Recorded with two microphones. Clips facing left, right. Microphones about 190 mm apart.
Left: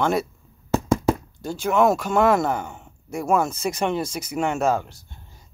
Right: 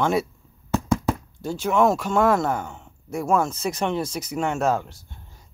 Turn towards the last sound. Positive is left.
turn(degrees=0)  # may be behind; listen again after turning